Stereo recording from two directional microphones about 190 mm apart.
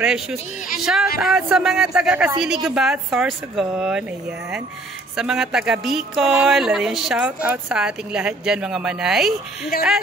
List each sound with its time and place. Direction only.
0.0 s speech: 5° right (ahead or behind)
5.1 s speech: 5° right (ahead or behind)
9.7 s speech: 50° left (ahead or behind)